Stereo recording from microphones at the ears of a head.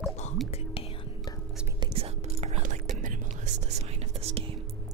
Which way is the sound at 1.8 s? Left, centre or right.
Right.